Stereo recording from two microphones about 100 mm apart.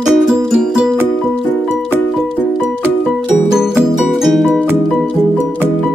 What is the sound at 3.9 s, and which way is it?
Music, 5° right (ahead or behind).